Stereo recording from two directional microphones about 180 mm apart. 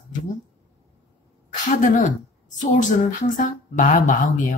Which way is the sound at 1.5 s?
45° left (ahead or behind).